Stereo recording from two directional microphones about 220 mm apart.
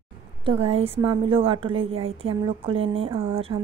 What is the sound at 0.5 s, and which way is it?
Speech, 25° right (ahead or behind).